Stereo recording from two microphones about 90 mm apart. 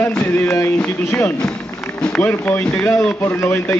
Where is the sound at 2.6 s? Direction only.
10° left (ahead or behind).